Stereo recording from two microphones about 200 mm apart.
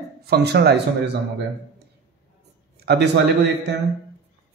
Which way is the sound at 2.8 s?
55° right (ahead or behind).